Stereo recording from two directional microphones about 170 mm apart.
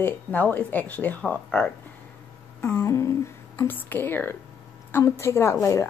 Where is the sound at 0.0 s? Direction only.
10° left (ahead or behind).